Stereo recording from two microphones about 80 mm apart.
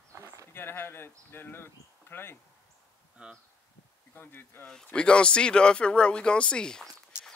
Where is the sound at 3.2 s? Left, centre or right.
Centre.